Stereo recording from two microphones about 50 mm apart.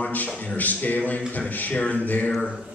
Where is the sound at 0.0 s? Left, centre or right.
Left.